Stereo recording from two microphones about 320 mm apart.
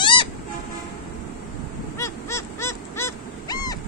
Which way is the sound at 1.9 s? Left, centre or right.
Centre.